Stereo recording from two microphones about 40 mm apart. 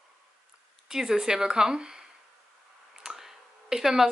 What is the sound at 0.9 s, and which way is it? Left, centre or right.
Speech, centre.